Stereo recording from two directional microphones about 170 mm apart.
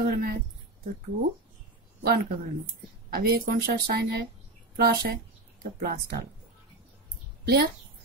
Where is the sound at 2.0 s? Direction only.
65° right (ahead or behind).